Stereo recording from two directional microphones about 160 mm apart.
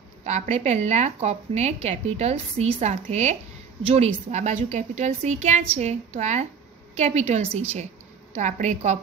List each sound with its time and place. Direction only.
0.2 s speech: 45° right (ahead or behind)